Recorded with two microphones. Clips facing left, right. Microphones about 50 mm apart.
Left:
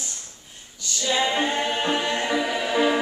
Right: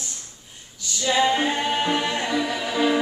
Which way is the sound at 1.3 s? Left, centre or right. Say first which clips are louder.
Right 1 dB; centre.